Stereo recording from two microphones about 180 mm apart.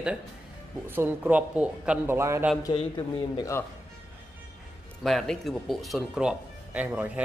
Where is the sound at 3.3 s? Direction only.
15° left (ahead or behind).